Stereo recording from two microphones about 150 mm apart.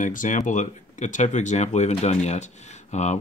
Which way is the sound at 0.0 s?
60° left (ahead or behind).